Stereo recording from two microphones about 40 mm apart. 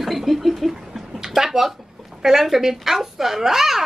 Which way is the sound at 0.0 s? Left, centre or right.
Centre.